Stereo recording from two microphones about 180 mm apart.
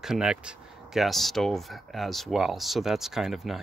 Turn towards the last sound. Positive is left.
turn(degrees=0)  # may be behind; listen again after turning